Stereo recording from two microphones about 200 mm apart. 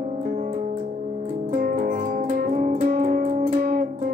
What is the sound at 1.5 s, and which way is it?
Music, 40° right (ahead or behind).